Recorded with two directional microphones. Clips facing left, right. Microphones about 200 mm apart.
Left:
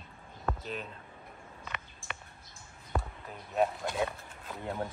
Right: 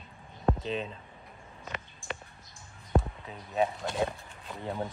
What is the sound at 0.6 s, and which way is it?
Speech, 90° right.